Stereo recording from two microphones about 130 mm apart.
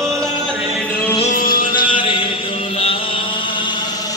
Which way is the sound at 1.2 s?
90° left.